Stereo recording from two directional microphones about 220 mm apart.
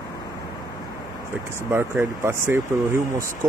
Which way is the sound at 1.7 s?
10° right (ahead or behind).